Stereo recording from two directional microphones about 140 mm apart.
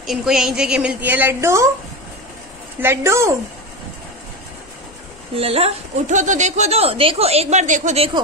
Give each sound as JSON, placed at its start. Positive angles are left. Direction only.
{"t": 0.0, "sound": "a woman's voice", "side_deg": 0}
{"t": 2.8, "sound": "a woman's voice", "side_deg": -15}
{"t": 5.3, "sound": "a woman's voice", "side_deg": -45}